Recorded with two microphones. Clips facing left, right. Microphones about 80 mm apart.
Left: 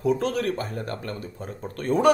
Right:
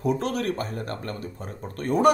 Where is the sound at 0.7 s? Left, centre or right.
Right.